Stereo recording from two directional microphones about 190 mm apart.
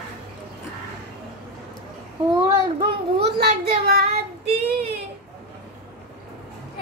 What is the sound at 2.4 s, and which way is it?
Child singing, 25° right (ahead or behind).